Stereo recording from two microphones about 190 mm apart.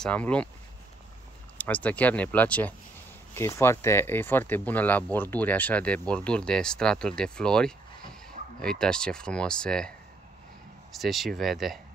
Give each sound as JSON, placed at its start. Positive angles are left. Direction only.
{"t": 0.0, "sound": "speech", "side_deg": 5}
{"t": 1.6, "sound": "speech", "side_deg": 10}